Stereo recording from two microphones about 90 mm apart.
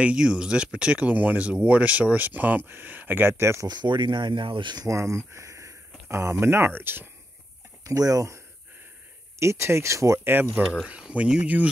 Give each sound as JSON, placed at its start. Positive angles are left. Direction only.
{"t": 0.0, "sound": "speech", "side_deg": -10}
{"t": 3.6, "sound": "speech", "side_deg": -55}
{"t": 4.8, "sound": "speech", "side_deg": -35}
{"t": 7.8, "sound": "speech", "side_deg": -40}
{"t": 9.4, "sound": "speech", "side_deg": -30}
{"t": 10.9, "sound": "speech", "side_deg": -10}